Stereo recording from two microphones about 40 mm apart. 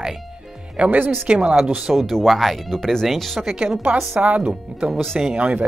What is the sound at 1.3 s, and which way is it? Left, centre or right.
Speech, right.